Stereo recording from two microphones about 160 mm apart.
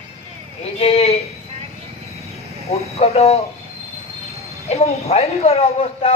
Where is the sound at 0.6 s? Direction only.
40° left (ahead or behind).